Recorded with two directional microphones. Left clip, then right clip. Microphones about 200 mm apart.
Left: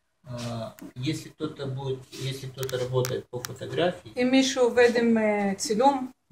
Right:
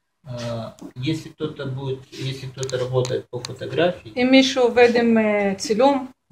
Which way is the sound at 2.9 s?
15° right (ahead or behind).